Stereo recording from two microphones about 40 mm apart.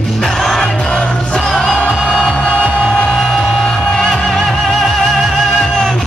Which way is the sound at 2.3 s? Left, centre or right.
Left.